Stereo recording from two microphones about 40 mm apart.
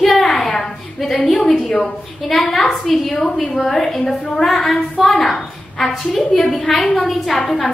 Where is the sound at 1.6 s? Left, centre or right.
Centre.